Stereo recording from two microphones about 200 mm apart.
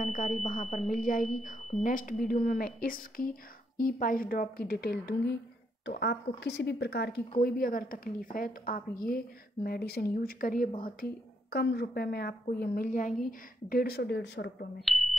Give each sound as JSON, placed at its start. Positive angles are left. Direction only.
{"t": 0.0, "sound": "a sound", "side_deg": 40}
{"t": 0.4, "sound": "a woman's voice", "side_deg": 40}
{"t": 14.8, "sound": "beep", "side_deg": 0}